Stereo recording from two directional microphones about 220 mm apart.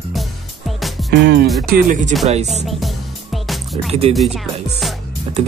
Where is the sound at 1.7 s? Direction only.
35° right (ahead or behind).